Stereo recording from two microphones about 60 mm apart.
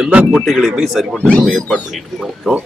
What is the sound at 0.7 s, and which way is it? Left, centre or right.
Speech, centre.